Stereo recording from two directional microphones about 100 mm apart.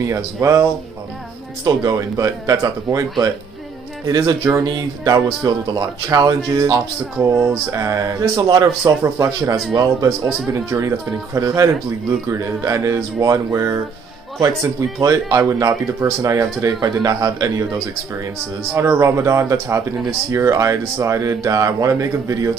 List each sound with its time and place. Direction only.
0.0 s speech: 30° right (ahead or behind)
1.8 s speech: 35° right (ahead or behind)
9.0 s a man's voice: 30° right (ahead or behind)
18.8 s speech: 30° right (ahead or behind)